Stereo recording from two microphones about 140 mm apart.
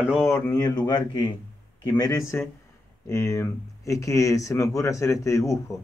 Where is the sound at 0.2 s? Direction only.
20° left (ahead or behind).